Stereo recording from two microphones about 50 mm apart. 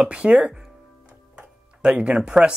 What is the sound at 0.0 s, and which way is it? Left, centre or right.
Speech, right.